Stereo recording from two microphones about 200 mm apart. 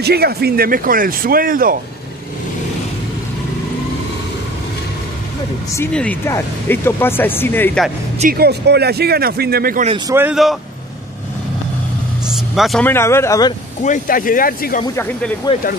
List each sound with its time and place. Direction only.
0.0 s speech: 50° right (ahead or behind)
5.8 s speech: 10° left (ahead or behind)
8.2 s speech: 50° right (ahead or behind)
9.8 s a man's voice: 20° right (ahead or behind)
10.1 s speech: 5° right (ahead or behind)
12.3 s speech: centre (ahead or behind); by 13.6 s 15° left (ahead or behind)
13.8 s speech: 40° left (ahead or behind)